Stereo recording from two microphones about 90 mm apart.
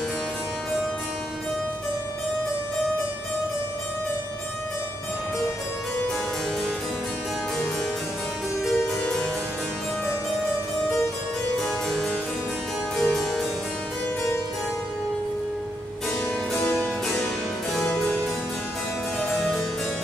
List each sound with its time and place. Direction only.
9.0 s harpsichord: 10° left (ahead or behind)
11.6 s harpsichord: 5° left (ahead or behind)
16.8 s music: 15° left (ahead or behind)
17.7 s harpsichord: 10° left (ahead or behind)